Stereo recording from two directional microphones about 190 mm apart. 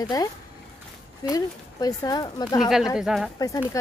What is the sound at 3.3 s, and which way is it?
Speech, 20° left (ahead or behind).